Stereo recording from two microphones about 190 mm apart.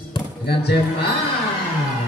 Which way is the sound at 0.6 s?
55° left (ahead or behind).